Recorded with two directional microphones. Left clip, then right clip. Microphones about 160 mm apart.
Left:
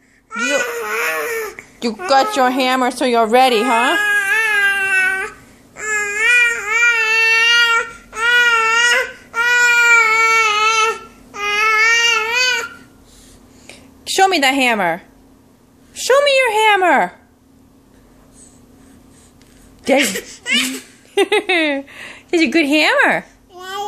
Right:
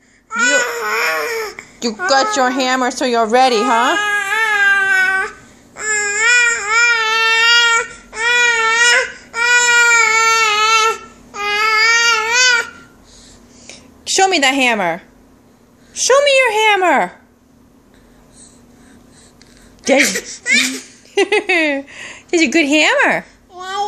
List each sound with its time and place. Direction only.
0.3 s baby cry: centre (ahead or behind)
4.0 s baby cry: 10° left (ahead or behind); by 12.6 s 5° right (ahead or behind)
13.7 s a sound: centre (ahead or behind)
15.9 s a woman's voice: 5° right (ahead or behind)
19.8 s speech: 5° right (ahead or behind)